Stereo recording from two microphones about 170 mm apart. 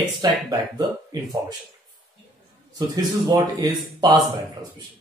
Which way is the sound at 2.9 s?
20° right (ahead or behind).